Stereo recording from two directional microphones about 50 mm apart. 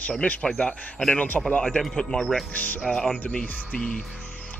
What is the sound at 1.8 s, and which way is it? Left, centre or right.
Speech, centre.